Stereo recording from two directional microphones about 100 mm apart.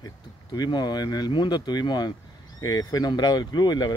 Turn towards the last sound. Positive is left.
turn(degrees=45)  # may be behind; listen again after turning